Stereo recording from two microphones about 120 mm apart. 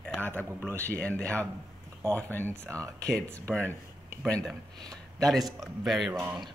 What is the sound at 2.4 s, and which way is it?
Speech, 20° right (ahead or behind).